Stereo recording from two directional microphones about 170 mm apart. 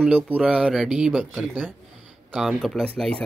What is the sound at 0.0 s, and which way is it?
Speech, 5° right (ahead or behind).